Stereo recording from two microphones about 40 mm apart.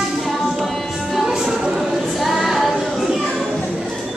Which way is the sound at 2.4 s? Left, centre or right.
Centre.